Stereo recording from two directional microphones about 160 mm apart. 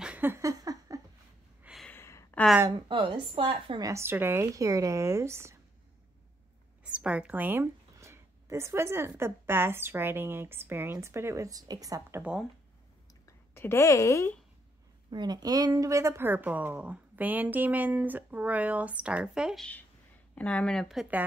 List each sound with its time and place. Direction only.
0.0 s a sound: 10° right (ahead or behind)
1.6 s a sound: 5° right (ahead or behind)
1.9 s gasp: 15° left (ahead or behind)
2.9 s a woman's voice: 30° right (ahead or behind)
3.9 s speech: 15° right (ahead or behind)
6.8 s speech: 5° right (ahead or behind)
12.2 s speech: 5° right (ahead or behind)
13.2 s a sound: 15° left (ahead or behind)
15.0 s speech: 25° right (ahead or behind); by 21.2 s 5° right (ahead or behind)